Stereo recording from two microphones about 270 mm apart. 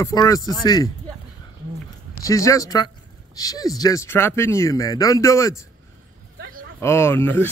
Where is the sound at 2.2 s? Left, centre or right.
Centre.